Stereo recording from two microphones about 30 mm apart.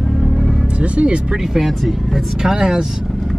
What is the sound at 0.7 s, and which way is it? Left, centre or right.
Speech, right.